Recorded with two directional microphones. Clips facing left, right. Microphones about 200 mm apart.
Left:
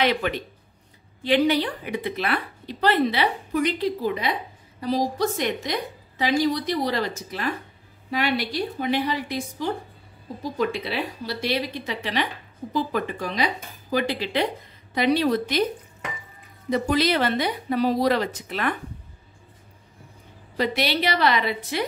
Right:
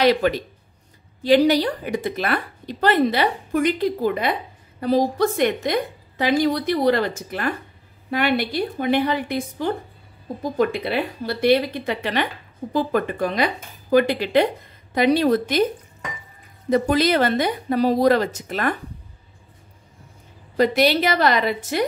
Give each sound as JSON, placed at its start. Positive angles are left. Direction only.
{"t": 0.0, "sound": "a woman's voice", "side_deg": -40}
{"t": 16.7, "sound": "a woman's voice", "side_deg": -45}
{"t": 20.5, "sound": "a woman's voice", "side_deg": -45}